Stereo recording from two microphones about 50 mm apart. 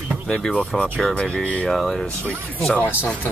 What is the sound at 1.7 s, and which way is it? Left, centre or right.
Speech, centre.